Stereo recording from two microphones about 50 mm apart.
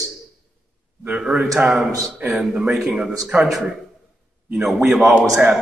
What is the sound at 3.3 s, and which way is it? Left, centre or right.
Speech, right.